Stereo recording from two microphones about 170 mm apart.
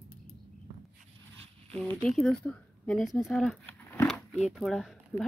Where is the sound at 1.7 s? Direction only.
10° left (ahead or behind).